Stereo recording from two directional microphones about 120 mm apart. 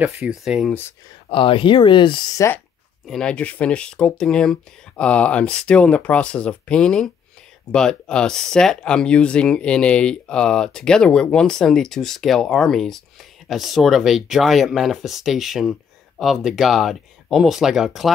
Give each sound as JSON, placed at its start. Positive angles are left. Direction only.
{"t": 0.0, "sound": "speech", "side_deg": -5}
{"t": 1.3, "sound": "speech", "side_deg": 45}
{"t": 2.3, "sound": "speech", "side_deg": 25}
{"t": 3.1, "sound": "speech", "side_deg": 5}